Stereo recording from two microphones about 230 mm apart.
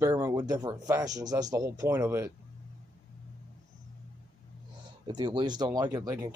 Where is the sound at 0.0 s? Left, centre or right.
Centre.